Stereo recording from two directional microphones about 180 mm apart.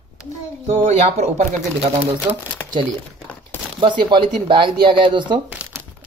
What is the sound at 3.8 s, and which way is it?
Speech, 25° right (ahead or behind).